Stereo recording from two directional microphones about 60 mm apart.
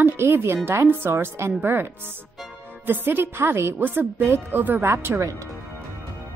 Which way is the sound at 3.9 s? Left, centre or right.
Right.